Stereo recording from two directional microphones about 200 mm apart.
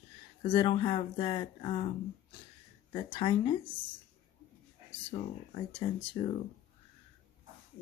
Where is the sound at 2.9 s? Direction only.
25° left (ahead or behind).